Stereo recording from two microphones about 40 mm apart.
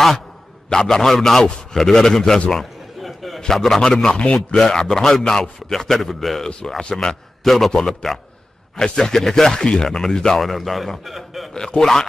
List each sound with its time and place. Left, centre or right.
0.7 s a man's voice: centre
3.0 s a sound: centre
3.3 s a man's voice: centre
4.2 s a man's voice: left
4.6 s a man's voice: centre
6.8 s a man's voice: centre
7.4 s a man's voice: centre
10.4 s a man's voice: centre
11.5 s a man's voice: centre